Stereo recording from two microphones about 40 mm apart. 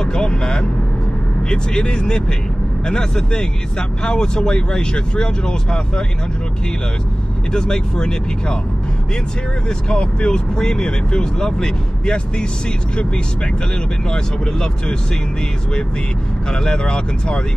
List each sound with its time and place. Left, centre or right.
0.0 s vehicle: centre
1.5 s speech: centre
7.5 s speech: left
9.7 s speech: left
14.1 s speech: centre
16.5 s speech: left